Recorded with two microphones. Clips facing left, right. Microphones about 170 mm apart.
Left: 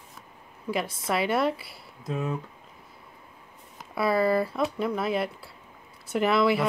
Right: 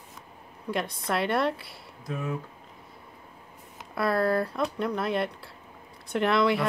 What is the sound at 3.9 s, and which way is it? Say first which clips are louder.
Speech: left 2 dB; centre (ahead or behind).